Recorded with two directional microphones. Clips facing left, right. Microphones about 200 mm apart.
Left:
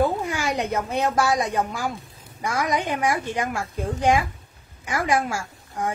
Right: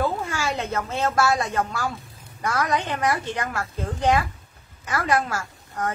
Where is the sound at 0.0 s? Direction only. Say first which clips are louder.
Left 2 dB; 15° left (ahead or behind).